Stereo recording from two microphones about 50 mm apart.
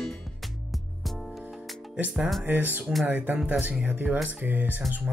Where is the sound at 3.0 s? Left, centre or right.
Right.